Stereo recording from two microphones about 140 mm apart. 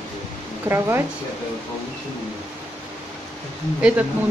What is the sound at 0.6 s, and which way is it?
Speech, 15° right (ahead or behind).